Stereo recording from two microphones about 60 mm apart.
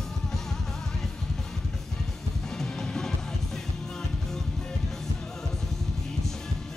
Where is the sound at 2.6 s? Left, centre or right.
Centre.